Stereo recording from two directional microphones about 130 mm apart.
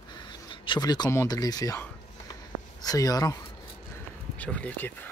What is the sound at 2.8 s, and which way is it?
Speech, 30° left (ahead or behind).